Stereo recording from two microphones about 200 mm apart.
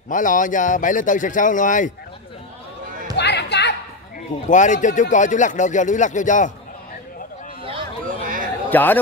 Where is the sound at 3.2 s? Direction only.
55° left (ahead or behind).